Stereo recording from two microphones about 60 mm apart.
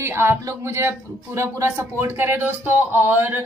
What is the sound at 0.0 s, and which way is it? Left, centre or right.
Speech, right.